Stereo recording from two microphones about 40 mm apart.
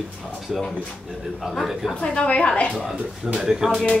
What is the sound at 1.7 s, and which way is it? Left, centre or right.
Speech, centre.